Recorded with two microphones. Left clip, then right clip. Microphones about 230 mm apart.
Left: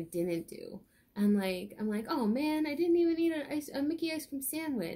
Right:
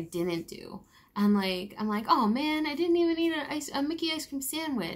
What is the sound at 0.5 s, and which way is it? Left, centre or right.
A woman's voice, centre.